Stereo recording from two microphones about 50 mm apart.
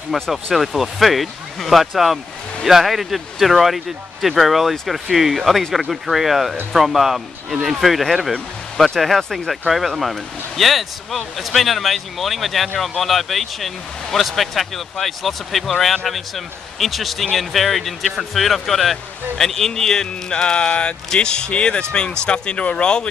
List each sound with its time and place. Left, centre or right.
0.1 s speech: centre